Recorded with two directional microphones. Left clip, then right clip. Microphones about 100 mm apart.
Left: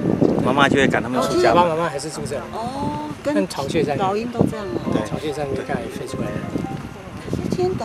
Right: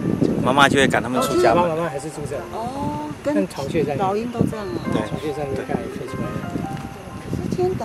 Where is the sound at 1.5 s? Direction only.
35° left (ahead or behind).